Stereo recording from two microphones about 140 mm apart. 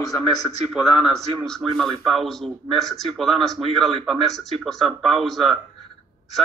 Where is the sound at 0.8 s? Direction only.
5° right (ahead or behind).